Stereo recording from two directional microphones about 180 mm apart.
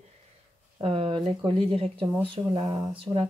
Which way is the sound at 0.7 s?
35° right (ahead or behind).